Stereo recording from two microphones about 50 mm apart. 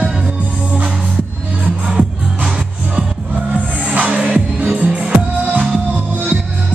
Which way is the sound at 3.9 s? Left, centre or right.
Right.